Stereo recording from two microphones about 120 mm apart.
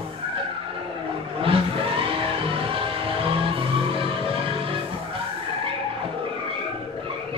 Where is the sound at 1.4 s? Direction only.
50° right (ahead or behind).